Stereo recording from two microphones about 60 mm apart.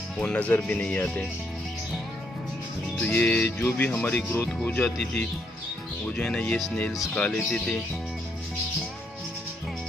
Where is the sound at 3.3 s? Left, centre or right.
Left.